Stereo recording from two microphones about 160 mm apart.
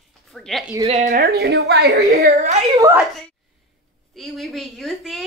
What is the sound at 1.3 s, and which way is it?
Speech, 80° right.